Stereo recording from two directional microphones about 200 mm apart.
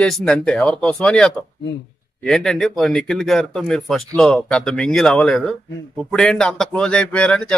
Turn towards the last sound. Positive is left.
turn(degrees=5)  # may be behind; listen again after turning